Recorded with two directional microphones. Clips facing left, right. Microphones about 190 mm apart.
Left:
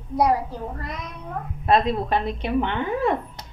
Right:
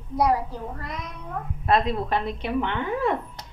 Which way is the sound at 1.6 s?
25° left (ahead or behind).